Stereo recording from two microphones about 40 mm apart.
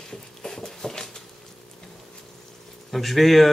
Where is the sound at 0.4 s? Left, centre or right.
Centre.